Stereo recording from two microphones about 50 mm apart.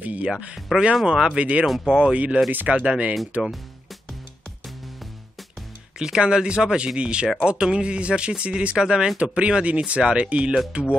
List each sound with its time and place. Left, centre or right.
0.0 s music: right
0.7 s speech: centre
1.4 s speech: right
1.7 s speech: centre
2.1 s speech: right
5.9 s speech: centre